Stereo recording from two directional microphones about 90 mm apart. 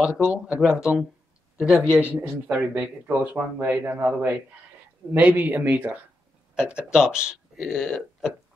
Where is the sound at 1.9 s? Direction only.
20° right (ahead or behind); by 8.3 s 5° left (ahead or behind).